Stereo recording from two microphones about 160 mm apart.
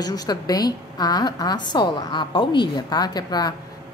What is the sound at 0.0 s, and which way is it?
A woman's voice, 25° left (ahead or behind).